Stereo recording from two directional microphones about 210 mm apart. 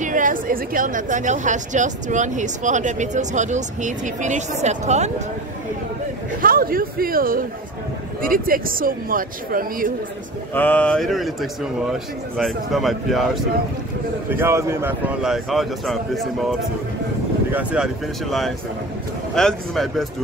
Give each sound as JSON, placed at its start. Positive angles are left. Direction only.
{"t": 0.0, "sound": "a woman's voice", "side_deg": -40}
{"t": 6.4, "sound": "speech", "side_deg": -45}
{"t": 10.5, "sound": "speech", "side_deg": 10}
{"t": 14.3, "sound": "speech", "side_deg": -10}
{"t": 19.3, "sound": "speech", "side_deg": 0}